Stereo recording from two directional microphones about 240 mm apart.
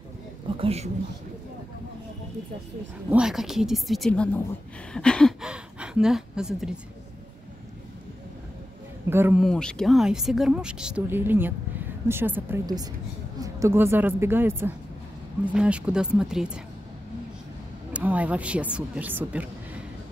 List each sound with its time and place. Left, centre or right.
0.6 s speech: right
3.1 s a woman's voice: centre
9.1 s a woman's voice: centre
17.9 s speech: centre